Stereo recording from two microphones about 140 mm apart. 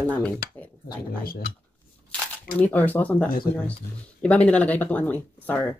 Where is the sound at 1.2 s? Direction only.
90° left.